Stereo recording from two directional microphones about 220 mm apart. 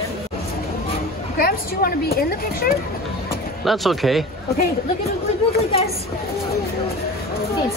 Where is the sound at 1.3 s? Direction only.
40° left (ahead or behind).